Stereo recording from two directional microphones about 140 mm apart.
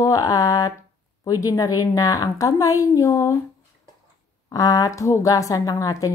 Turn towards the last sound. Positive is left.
turn(degrees=25)  # may be behind; listen again after turning